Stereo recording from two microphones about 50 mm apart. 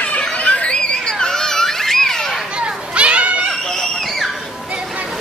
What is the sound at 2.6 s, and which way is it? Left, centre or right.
Children playing, right.